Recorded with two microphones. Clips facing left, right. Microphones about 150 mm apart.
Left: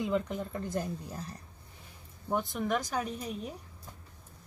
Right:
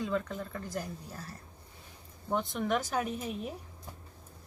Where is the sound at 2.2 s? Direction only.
Centre (ahead or behind).